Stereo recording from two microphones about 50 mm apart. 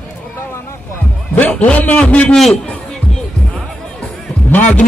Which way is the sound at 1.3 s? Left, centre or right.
Left.